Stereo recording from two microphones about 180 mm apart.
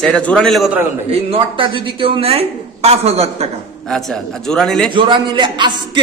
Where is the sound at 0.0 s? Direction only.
5° left (ahead or behind).